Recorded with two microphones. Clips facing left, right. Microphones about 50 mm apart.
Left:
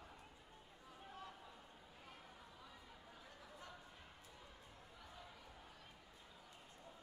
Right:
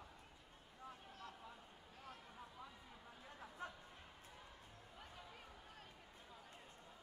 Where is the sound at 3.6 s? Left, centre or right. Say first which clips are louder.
Right 7 dB; right.